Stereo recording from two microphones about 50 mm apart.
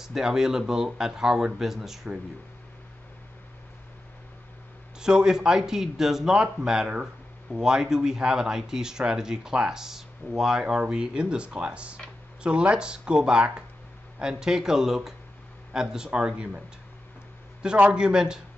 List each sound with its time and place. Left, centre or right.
0.0 s speech: centre
5.0 s speech: centre
17.8 s speech: centre